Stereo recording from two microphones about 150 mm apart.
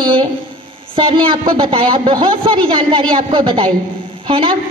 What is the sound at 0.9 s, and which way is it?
A man's voice, 35° right (ahead or behind).